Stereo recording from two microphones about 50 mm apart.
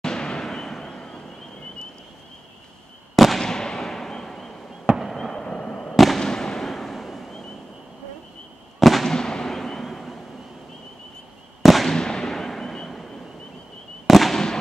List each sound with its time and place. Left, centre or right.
0.0 s a sound: centre
3.2 s fireworks: centre
4.8 s fireworks: centre
5.1 s fireworks: centre
5.9 s fireworks: centre
6.2 s fireworks: centre
8.7 s fireworks: centre
9.1 s fireworks: centre
11.6 s fireworks: centre
11.9 s a sound: centre
14.0 s fireworks: centre